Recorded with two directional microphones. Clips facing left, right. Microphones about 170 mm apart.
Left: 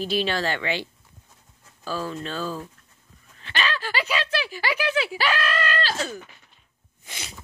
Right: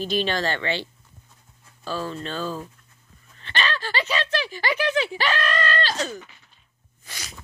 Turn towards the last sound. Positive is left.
turn(degrees=25)  # may be behind; listen again after turning